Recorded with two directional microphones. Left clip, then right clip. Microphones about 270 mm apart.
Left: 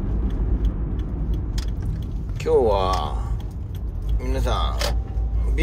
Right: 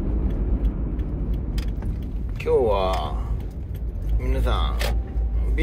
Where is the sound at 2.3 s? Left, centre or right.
Centre.